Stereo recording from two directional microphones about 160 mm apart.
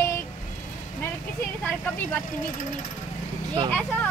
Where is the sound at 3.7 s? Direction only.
10° left (ahead or behind).